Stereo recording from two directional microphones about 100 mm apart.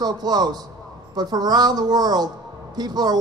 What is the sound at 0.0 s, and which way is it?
Speech, 45° right (ahead or behind).